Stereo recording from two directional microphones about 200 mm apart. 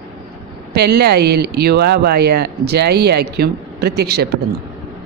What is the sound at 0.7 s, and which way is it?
A woman's voice, 55° right (ahead or behind).